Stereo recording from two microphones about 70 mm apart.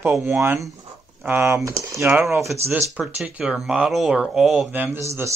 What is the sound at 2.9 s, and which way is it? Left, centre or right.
Speech, centre.